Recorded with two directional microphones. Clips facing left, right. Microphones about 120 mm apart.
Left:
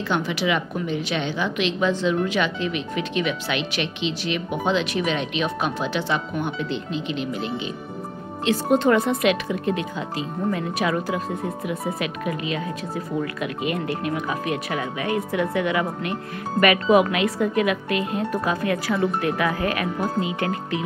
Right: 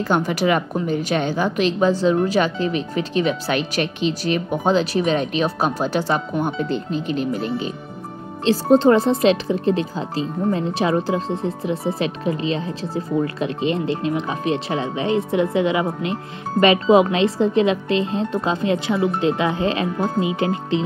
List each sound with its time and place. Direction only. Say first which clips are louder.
0.0 s a woman's voice: right 5 dB; 45° right (ahead or behind)
8.5 s speech: right 5 dB; 30° right (ahead or behind)